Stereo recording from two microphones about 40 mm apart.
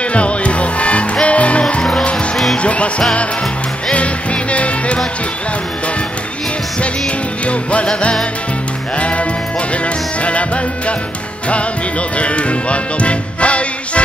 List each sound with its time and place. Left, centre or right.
0.1 s music: left
3.9 s music: left
7.8 s music: left
10.2 s music: left
12.2 s music: left